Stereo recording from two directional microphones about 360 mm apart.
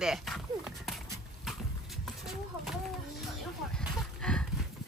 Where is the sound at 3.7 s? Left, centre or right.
Centre.